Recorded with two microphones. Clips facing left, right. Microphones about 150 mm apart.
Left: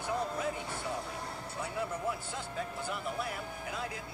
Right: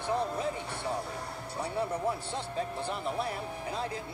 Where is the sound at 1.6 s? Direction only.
30° right (ahead or behind).